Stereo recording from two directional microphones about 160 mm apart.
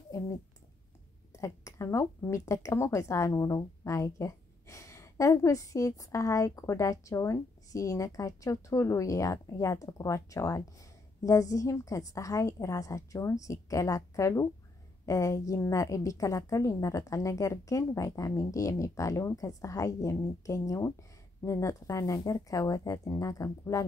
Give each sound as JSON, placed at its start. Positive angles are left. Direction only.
{"t": 1.3, "sound": "speech", "side_deg": 20}